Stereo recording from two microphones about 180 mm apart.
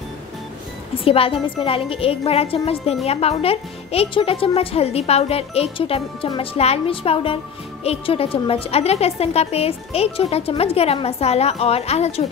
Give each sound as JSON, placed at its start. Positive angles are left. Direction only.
{"t": 1.0, "sound": "a woman's voice", "side_deg": 30}